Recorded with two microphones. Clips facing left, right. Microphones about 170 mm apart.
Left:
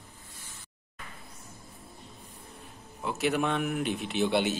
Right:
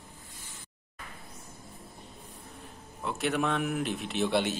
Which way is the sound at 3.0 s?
Centre (ahead or behind).